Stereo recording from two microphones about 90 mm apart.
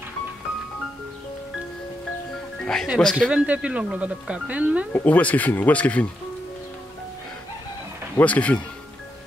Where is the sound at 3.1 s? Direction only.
10° right (ahead or behind).